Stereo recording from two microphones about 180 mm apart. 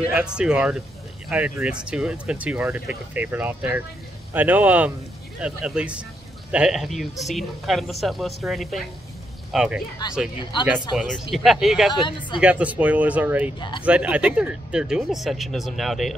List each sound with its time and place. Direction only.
0.0 s speech: 5° right (ahead or behind)
10.0 s speech: 25° left (ahead or behind)
11.0 s speech: centre (ahead or behind)
11.9 s speech: 25° left (ahead or behind)
12.4 s speech: 5° right (ahead or behind)
13.6 s speech: 25° left (ahead or behind)
13.8 s speech: 5° right (ahead or behind)